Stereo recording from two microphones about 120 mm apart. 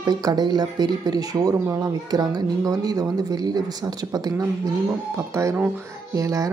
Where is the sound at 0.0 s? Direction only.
35° right (ahead or behind).